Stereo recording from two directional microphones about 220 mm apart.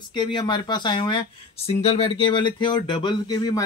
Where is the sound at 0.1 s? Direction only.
20° left (ahead or behind).